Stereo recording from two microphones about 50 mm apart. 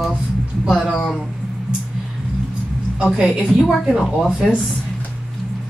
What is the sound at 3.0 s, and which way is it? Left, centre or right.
A woman's voice, centre.